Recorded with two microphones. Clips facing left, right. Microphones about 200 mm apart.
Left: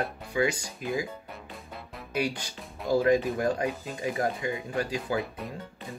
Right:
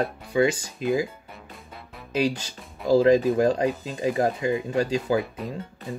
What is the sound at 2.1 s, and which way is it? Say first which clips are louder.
Speech: right 6 dB; 25° right (ahead or behind).